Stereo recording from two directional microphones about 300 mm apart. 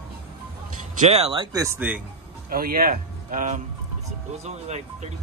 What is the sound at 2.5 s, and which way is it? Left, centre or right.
Speech, right.